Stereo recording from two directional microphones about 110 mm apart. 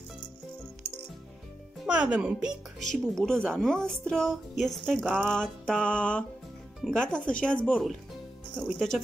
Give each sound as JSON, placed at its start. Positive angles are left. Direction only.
{"t": 1.9, "sound": "a child's voice", "side_deg": -10}
{"t": 2.9, "sound": "music", "side_deg": 5}
{"t": 6.8, "sound": "speech", "side_deg": 5}
{"t": 7.8, "sound": "music", "side_deg": 0}